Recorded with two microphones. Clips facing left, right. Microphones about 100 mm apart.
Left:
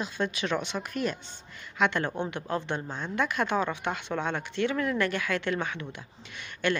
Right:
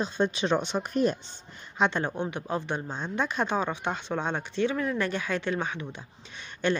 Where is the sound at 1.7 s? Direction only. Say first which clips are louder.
Right 1 dB; 20° right (ahead or behind).